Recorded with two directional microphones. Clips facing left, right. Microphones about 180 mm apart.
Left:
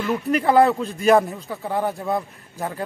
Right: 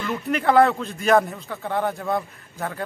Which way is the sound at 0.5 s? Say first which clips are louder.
Even; 5° left (ahead or behind).